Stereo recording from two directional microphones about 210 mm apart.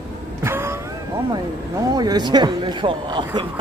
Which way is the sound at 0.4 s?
10° right (ahead or behind).